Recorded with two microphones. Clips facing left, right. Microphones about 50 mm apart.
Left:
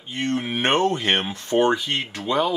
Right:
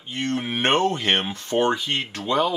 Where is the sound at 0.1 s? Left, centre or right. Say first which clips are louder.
Left 1 dB; centre.